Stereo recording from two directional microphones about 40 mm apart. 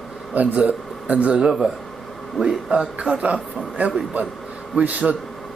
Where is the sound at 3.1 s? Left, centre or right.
Right.